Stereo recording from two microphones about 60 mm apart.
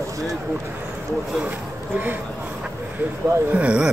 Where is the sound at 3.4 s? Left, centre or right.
Right.